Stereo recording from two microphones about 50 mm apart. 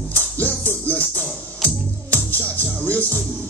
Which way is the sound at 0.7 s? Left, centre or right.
Left.